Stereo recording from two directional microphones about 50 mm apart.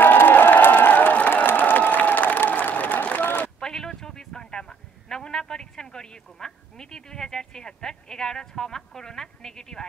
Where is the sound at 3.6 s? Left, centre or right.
Centre.